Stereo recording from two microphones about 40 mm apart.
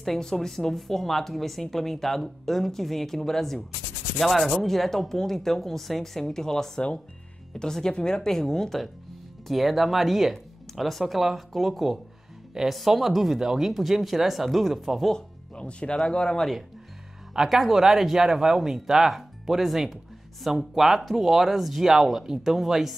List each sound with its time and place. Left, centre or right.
0.0 s speech: centre
15.5 s speech: left
17.3 s speech: centre